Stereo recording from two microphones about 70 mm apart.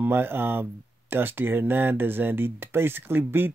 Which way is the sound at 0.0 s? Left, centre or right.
Right.